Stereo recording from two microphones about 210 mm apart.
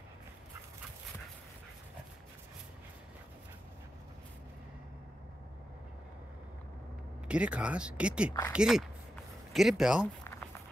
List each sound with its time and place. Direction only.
7.2 s speech: 5° right (ahead or behind)
8.3 s speech: 15° left (ahead or behind)
8.5 s speech: centre (ahead or behind)
10.2 s a sound: 10° left (ahead or behind)